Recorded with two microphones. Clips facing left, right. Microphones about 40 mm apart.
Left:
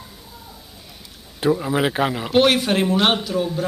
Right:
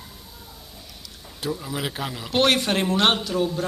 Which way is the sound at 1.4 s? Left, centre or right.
Left.